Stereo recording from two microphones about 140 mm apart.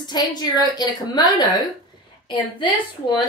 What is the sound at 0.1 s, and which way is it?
A woman's voice, 30° left (ahead or behind).